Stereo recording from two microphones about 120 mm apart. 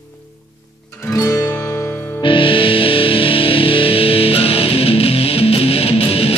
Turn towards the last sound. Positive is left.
turn(degrees=55)  # may be behind; listen again after turning